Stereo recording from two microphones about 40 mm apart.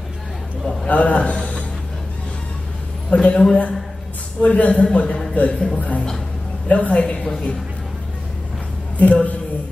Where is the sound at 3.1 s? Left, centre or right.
Left.